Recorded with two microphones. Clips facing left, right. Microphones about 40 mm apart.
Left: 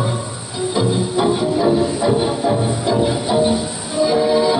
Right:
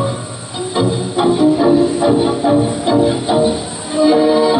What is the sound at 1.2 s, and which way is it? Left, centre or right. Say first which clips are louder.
Music: right 6 dB; right.